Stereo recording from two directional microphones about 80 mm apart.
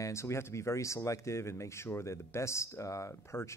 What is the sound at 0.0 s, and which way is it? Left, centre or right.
Speech, left.